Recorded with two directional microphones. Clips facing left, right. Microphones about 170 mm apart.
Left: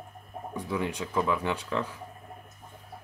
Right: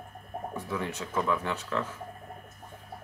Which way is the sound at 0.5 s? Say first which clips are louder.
Left 4 dB; 15° left (ahead or behind).